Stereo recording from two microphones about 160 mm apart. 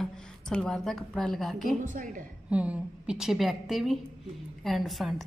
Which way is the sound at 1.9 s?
55° right (ahead or behind).